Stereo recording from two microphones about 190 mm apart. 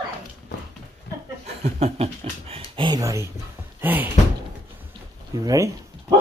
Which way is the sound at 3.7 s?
10° right (ahead or behind).